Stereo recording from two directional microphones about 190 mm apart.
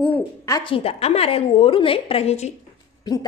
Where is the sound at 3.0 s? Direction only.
20° left (ahead or behind).